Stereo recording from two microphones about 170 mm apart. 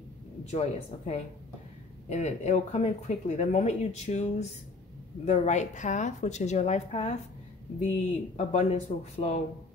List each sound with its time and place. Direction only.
0.5 s a woman's voice: 40° left (ahead or behind)
8.4 s speech: 40° left (ahead or behind)